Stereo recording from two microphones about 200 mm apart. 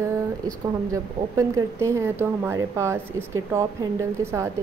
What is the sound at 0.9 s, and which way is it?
A woman's voice, 15° right (ahead or behind).